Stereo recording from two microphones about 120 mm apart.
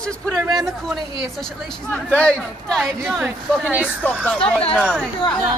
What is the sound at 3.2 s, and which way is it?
Speech, 15° right (ahead or behind).